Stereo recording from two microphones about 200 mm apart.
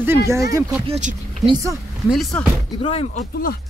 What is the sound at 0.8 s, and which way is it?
Speech, 30° right (ahead or behind).